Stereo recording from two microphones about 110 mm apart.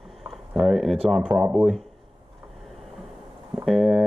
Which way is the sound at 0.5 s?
15° right (ahead or behind).